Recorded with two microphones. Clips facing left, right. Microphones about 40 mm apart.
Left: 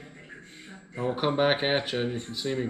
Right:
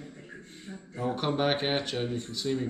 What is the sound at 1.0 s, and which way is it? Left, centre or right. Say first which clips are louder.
Speech: left 3 dB; centre.